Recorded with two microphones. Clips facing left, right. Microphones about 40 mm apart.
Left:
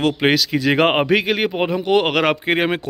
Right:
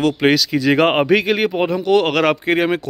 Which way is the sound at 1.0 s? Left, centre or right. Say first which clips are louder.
Right 2 dB; centre.